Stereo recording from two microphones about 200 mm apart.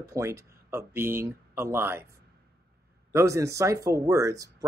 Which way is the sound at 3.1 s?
15° right (ahead or behind).